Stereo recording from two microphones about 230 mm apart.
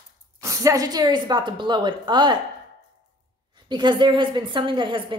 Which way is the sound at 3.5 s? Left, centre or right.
Centre.